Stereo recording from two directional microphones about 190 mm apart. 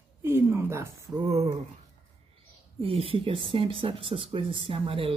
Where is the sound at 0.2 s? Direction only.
15° right (ahead or behind).